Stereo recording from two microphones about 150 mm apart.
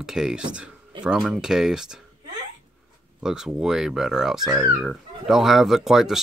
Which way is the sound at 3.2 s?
5° right (ahead or behind).